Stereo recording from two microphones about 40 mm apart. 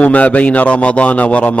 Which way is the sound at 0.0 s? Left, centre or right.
Left.